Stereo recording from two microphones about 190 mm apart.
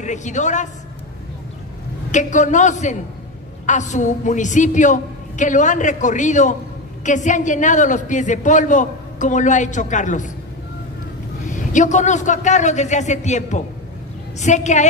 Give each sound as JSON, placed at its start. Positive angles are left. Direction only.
{"t": 0.0, "sound": "a woman's voice", "side_deg": 40}
{"t": 2.0, "sound": "a woman's voice", "side_deg": 40}
{"t": 11.4, "sound": "a woman's voice", "side_deg": 40}